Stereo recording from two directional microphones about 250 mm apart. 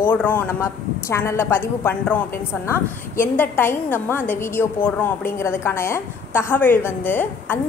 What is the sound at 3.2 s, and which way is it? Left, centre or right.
A woman's voice, centre.